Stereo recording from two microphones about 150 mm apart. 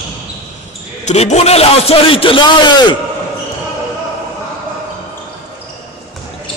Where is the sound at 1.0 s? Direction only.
50° left (ahead or behind); by 3.0 s 30° left (ahead or behind).